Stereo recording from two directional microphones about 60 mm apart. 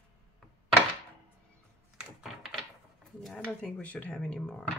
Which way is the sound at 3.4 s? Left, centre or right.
Left.